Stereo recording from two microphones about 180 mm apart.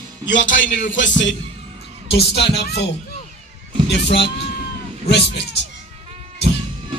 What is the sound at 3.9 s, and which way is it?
Music, 75° left (ahead or behind).